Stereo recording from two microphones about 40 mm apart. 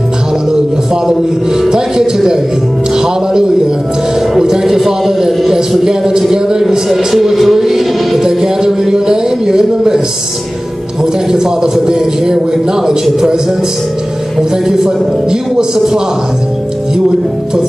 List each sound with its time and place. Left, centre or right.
1.7 s music: centre
4.3 s music: centre
11.3 s music: centre
15.5 s music: centre